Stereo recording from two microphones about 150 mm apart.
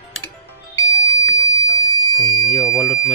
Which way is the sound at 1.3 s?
30° right (ahead or behind).